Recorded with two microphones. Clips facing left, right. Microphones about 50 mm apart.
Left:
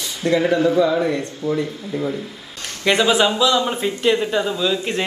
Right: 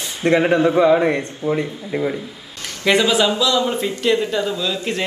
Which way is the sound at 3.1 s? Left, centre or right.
Centre.